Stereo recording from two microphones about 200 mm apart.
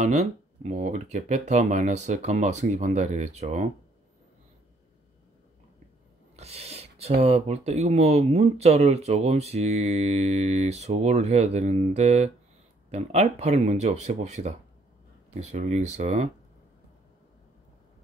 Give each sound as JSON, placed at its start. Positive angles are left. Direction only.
{"t": 0.0, "sound": "speech", "side_deg": -35}
{"t": 6.3, "sound": "filing", "side_deg": -30}
{"t": 7.2, "sound": "speech", "side_deg": -30}
{"t": 15.5, "sound": "speech", "side_deg": -35}